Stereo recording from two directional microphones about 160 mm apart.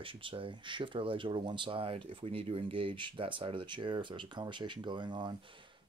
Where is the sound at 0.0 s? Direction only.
30° right (ahead or behind).